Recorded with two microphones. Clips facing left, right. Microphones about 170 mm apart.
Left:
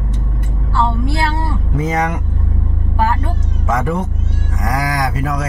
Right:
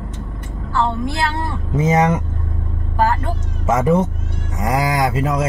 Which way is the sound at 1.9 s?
25° right (ahead or behind).